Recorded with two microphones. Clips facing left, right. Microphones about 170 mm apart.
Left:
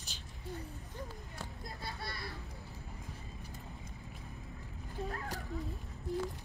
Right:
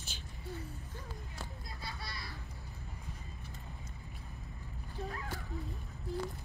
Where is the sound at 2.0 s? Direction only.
55° left (ahead or behind).